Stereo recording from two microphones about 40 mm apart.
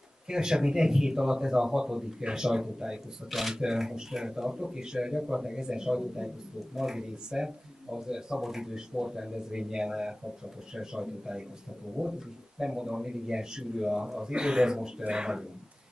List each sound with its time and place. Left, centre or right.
0.3 s speech: centre